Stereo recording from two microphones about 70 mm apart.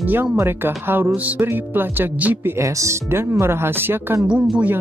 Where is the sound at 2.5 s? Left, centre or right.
Right.